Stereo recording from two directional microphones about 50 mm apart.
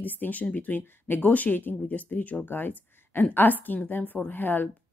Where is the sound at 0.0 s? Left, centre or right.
Left.